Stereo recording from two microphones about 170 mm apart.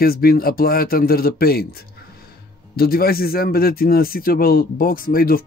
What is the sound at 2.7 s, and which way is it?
Speech, 65° left (ahead or behind).